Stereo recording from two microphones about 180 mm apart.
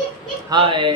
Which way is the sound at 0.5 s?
25° right (ahead or behind).